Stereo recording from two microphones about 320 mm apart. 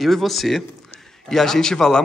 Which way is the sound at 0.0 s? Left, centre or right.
Centre.